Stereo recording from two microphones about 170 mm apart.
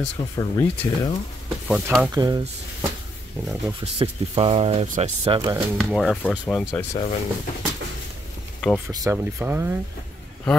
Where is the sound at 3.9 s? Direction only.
30° right (ahead or behind).